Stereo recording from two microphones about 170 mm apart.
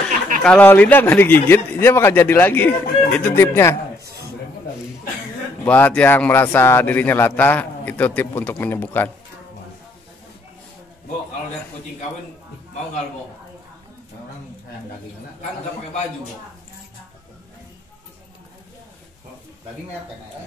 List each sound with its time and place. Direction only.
0.4 s speech: 5° left (ahead or behind)
5.7 s speech: 10° left (ahead or behind)